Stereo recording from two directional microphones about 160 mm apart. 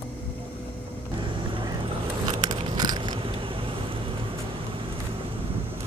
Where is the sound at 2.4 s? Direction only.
25° right (ahead or behind).